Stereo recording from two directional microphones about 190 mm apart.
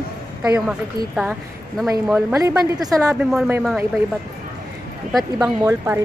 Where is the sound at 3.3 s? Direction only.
Centre (ahead or behind).